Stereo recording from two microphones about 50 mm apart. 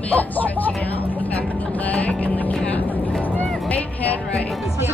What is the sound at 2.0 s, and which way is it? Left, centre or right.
Music, left.